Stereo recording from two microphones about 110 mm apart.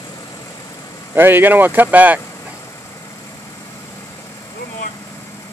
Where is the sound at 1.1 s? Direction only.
20° right (ahead or behind).